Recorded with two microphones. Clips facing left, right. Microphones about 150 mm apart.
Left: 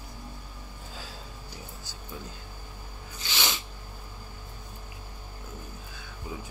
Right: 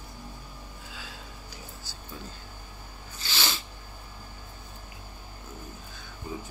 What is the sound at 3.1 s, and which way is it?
Sneeze, 20° left (ahead or behind).